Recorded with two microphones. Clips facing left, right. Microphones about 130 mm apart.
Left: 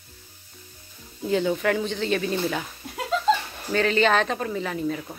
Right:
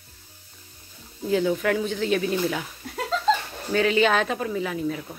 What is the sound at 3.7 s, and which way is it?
A woman's voice, 5° right (ahead or behind).